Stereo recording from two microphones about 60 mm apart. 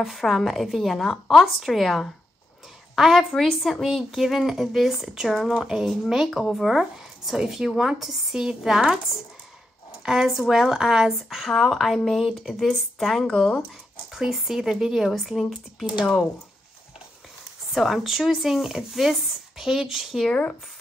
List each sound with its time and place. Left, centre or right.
0.0 s speech: centre
17.7 s speech: centre
20.2 s speech: left